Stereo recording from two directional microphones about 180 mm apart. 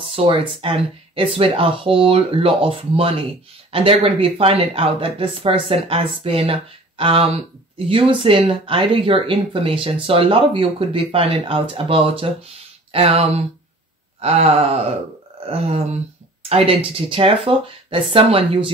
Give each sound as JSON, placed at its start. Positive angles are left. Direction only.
{"t": 0.1, "sound": "speech", "side_deg": -30}